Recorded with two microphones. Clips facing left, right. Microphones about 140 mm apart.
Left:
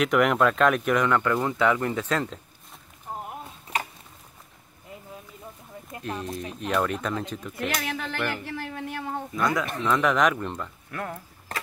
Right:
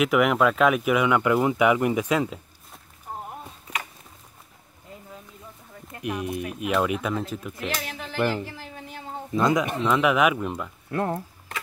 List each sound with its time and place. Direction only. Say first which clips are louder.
0.0 s speech: right 1 dB; 5° right (ahead or behind)
6.0 s speech: right 4 dB; 10° right (ahead or behind)
7.7 s speech: left 3 dB; 55° left (ahead or behind)
8.2 s speech: right 9 dB; 30° right (ahead or behind)
8.5 s a sound: left 6 dB; 60° left (ahead or behind)
9.3 s speech: right 5 dB; 20° right (ahead or behind)
9.8 s speech: right 1 dB; 10° right (ahead or behind)
10.9 s speech: right 10 dB; 30° right (ahead or behind)